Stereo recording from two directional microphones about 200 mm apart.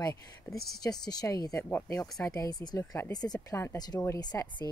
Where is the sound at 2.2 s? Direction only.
15° left (ahead or behind).